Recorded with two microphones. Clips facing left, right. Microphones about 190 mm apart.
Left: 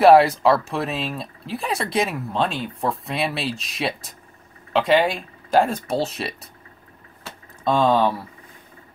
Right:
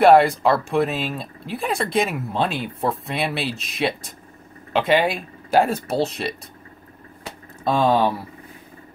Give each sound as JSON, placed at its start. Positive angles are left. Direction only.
{"t": 0.0, "sound": "speech", "side_deg": 0}
{"t": 7.6, "sound": "speech", "side_deg": -10}